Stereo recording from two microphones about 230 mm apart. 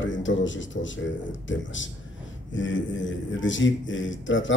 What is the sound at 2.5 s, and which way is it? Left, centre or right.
Speech, left.